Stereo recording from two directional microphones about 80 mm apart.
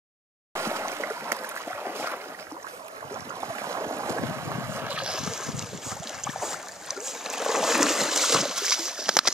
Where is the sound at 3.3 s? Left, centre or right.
Right.